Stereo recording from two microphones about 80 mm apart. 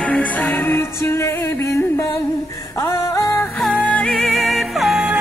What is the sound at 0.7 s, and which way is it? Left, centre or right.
Music, left.